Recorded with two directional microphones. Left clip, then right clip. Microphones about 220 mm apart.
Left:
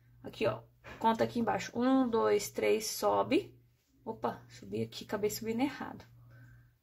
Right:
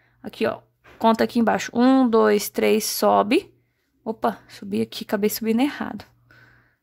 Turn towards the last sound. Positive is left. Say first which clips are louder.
# right 12 dB
turn(degrees=-50)  # may be behind; listen again after turning